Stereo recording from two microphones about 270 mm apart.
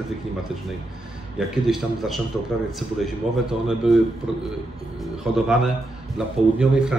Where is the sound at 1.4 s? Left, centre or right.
Centre.